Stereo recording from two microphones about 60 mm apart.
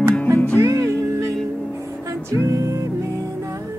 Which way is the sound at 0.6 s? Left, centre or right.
Right.